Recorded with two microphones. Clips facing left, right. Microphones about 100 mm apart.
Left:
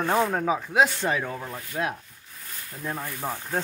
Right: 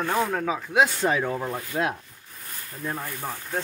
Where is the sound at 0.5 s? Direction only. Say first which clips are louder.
Right 1 dB; 10° left (ahead or behind).